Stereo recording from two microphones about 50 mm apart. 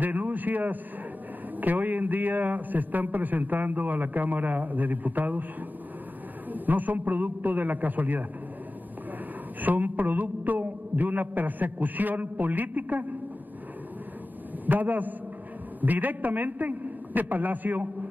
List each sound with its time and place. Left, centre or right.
0.0 s a sound: right
1.6 s a man's voice: right
6.5 s a man's voice: right
9.6 s a man's voice: right
14.7 s a man's voice: right